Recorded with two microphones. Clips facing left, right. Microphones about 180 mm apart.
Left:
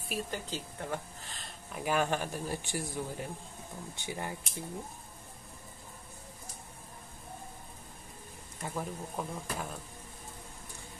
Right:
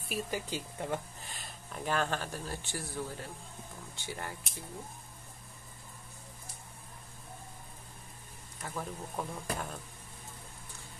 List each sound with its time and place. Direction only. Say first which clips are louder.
0.1 s speech: right 1 dB; 10° right (ahead or behind)
1.4 s speech: left 2 dB; 5° left (ahead or behind)
8.6 s speech: left 2 dB; 10° left (ahead or behind)